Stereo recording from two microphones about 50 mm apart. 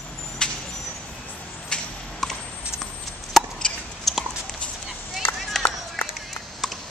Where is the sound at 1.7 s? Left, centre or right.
Centre.